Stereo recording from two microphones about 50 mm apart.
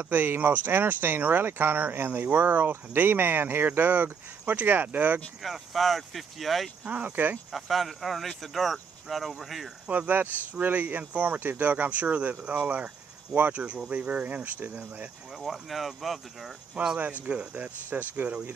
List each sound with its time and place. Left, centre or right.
0.0 s speech: right
5.4 s speech: centre
7.1 s speech: right
7.5 s speech: centre
9.8 s speech: right
15.3 s speech: centre
16.8 s speech: centre
17.2 s speech: right